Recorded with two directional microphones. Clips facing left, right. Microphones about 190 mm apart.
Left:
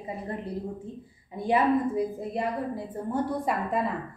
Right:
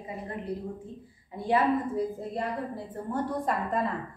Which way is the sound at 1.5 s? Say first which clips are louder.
Left 2 dB; 15° left (ahead or behind).